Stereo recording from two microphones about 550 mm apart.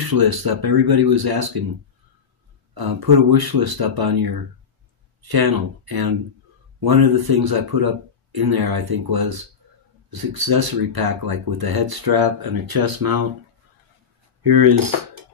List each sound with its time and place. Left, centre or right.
0.1 s speech: right
2.7 s speech: right
14.4 s speech: right